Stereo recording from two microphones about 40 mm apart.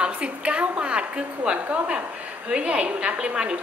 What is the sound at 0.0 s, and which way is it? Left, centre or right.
A woman's voice, right.